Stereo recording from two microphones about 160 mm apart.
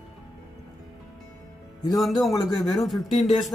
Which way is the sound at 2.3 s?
25° left (ahead or behind).